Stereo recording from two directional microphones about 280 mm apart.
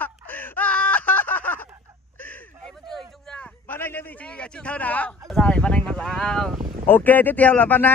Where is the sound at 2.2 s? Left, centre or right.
Centre.